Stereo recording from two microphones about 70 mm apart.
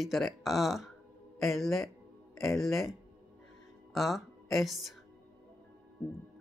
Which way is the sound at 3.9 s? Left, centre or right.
Centre.